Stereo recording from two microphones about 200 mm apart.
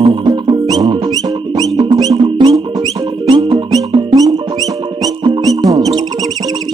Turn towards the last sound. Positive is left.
turn(degrees=-20)  # may be behind; listen again after turning